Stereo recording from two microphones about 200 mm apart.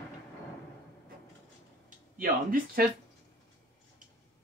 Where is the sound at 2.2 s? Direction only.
45° right (ahead or behind).